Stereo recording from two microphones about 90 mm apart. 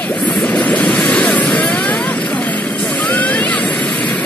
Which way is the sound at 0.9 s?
10° left (ahead or behind).